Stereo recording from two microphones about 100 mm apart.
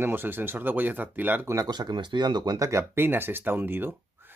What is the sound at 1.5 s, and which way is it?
Speech, 40° right (ahead or behind).